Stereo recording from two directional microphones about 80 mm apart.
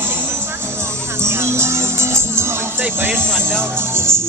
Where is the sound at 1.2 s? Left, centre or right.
Right.